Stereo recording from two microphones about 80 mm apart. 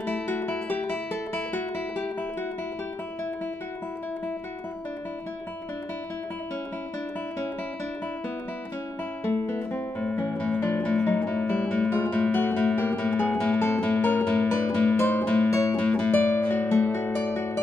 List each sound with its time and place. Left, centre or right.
0.0 s music: left
9.2 s guitar: left
9.9 s music: centre